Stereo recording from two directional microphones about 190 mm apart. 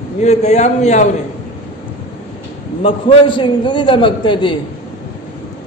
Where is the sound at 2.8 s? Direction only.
25° left (ahead or behind).